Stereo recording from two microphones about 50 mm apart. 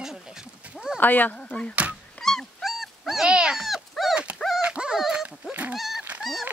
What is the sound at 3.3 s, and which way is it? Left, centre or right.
Speech, centre.